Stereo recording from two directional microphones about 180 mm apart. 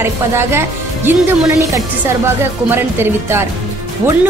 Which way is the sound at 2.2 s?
15° right (ahead or behind).